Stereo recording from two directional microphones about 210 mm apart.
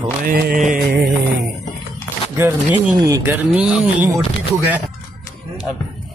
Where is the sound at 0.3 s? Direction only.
40° right (ahead or behind).